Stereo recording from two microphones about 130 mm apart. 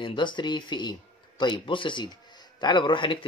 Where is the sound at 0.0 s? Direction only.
35° left (ahead or behind).